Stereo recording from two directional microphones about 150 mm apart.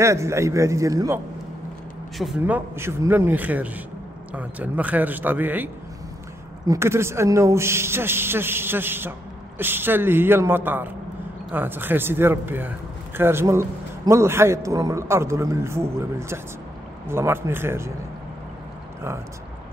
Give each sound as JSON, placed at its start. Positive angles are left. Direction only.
{"t": 0.0, "sound": "a man's voice", "side_deg": -20}
{"t": 2.1, "sound": "a man's voice", "side_deg": -5}
{"t": 6.7, "sound": "a man's voice", "side_deg": -15}